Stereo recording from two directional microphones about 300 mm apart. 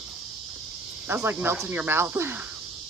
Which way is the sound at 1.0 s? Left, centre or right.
Centre.